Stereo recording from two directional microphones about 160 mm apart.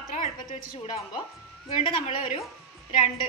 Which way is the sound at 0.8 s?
30° left (ahead or behind).